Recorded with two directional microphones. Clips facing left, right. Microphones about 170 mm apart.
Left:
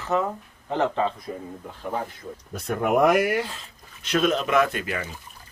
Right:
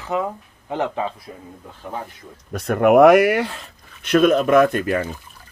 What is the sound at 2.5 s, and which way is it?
Speech, 70° right (ahead or behind).